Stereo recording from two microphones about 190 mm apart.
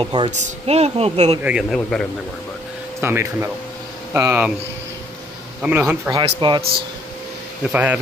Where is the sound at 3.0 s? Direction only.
10° right (ahead or behind).